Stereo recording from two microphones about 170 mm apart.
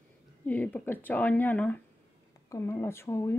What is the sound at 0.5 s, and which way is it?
Speech, 10° left (ahead or behind).